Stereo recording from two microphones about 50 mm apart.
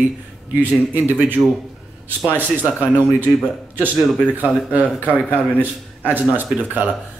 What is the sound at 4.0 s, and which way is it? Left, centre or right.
Speech, centre.